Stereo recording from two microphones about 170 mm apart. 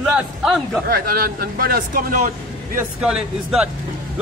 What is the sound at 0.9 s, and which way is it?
Speech, 60° right (ahead or behind).